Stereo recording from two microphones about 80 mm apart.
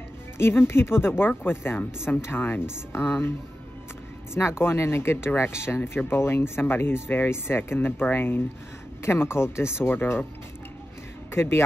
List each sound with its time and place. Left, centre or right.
0.4 s speech: left
4.4 s speech: left
11.3 s speech: left